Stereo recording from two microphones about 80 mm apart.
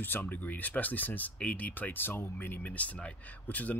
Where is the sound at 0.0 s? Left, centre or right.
Left.